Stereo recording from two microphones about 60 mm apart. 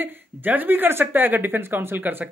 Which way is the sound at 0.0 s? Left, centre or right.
Right.